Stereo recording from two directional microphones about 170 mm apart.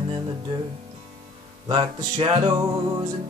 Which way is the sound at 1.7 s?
25° right (ahead or behind).